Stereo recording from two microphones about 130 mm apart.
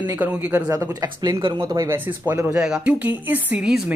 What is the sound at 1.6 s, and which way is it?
Speech, 25° right (ahead or behind).